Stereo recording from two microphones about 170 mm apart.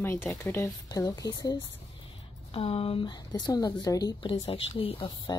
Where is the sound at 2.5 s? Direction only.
35° left (ahead or behind).